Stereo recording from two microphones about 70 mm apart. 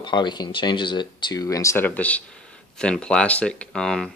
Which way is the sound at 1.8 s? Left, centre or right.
Left.